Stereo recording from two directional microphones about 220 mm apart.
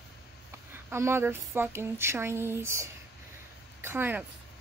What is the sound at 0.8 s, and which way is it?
Speech, 10° right (ahead or behind).